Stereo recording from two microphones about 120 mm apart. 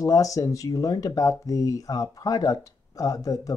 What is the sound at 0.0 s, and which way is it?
Speech, 30° left (ahead or behind).